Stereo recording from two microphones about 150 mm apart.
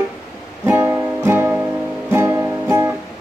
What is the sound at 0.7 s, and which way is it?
Music, 15° right (ahead or behind).